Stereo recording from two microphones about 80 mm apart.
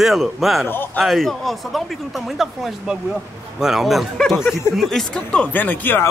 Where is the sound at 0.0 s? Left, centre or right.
Centre.